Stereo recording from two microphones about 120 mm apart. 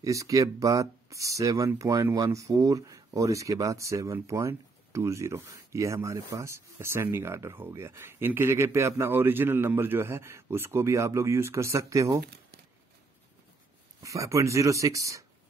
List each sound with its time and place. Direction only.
0.0 s speech: 25° right (ahead or behind)
14.0 s speech: 25° right (ahead or behind)